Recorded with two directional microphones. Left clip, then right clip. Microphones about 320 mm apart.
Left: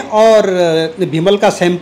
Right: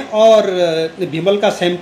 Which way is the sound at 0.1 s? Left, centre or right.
Left.